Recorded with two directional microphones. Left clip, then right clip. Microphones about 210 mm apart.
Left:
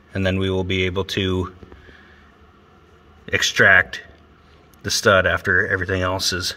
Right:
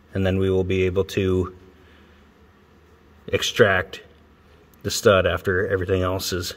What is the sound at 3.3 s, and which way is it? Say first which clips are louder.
Speech: left 4 dB; 20° right (ahead or behind).